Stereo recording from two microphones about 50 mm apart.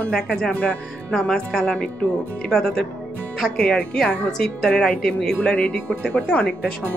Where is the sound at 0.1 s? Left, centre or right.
Centre.